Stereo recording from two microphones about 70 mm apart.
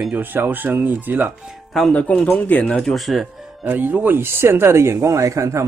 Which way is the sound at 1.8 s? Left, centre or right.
Centre.